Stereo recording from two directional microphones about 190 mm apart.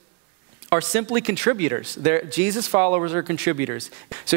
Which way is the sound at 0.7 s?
10° right (ahead or behind).